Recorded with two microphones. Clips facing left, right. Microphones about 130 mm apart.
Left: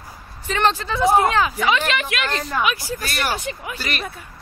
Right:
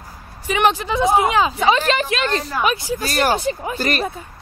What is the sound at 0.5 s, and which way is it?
Speech, 15° right (ahead or behind).